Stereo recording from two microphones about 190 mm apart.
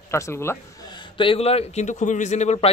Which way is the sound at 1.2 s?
30° left (ahead or behind).